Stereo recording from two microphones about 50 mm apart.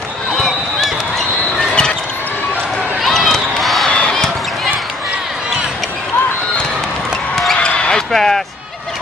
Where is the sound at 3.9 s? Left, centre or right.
Left.